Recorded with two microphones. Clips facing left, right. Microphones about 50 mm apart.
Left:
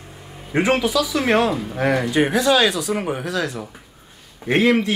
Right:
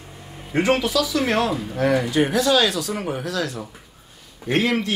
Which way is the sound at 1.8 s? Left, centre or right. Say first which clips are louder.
Even; centre.